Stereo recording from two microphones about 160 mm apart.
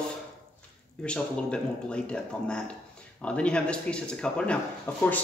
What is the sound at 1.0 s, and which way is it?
Speech, 5° left (ahead or behind).